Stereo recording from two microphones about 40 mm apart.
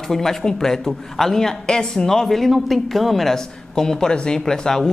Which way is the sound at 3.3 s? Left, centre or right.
Centre.